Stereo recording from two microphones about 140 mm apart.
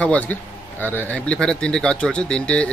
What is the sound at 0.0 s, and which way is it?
Speech, 10° left (ahead or behind).